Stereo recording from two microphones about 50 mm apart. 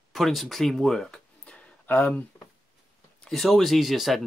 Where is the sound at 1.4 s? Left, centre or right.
Left.